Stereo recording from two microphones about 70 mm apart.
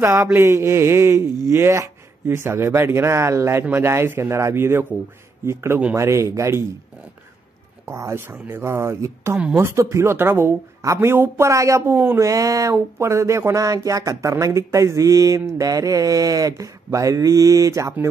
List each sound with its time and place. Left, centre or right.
0.4 s speech: right
5.9 s mantra: right
7.8 s speech: right
10.8 s speech: right
12.3 s mantra: right